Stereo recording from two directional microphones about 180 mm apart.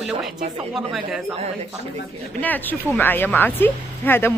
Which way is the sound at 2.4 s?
10° left (ahead or behind).